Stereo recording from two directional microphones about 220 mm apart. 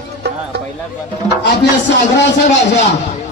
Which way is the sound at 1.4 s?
50° left (ahead or behind).